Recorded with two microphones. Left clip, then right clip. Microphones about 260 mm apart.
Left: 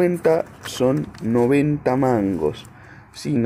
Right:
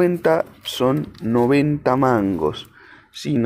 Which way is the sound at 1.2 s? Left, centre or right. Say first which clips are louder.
Right 1 dB; centre.